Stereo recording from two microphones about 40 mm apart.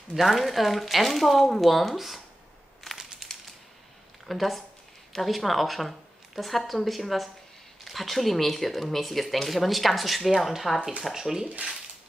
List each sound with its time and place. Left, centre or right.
0.1 s speech: centre
4.3 s speech: centre